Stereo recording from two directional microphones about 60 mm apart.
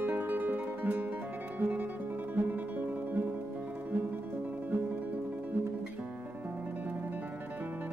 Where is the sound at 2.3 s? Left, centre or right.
Right.